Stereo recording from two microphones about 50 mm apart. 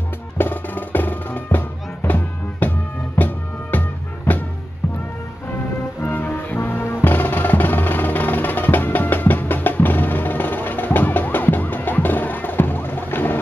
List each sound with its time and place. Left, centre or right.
0.4 s music: left
6.0 s music: left